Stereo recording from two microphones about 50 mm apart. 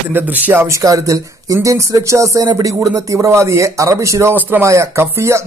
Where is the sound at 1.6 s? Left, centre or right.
Right.